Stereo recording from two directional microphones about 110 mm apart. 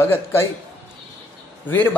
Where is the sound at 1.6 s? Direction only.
15° left (ahead or behind).